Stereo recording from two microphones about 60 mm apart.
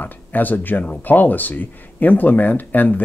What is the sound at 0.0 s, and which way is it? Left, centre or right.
Speech, left.